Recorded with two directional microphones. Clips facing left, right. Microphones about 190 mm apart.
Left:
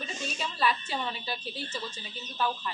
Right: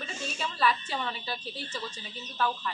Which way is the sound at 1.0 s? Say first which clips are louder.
Even; 10° left (ahead or behind).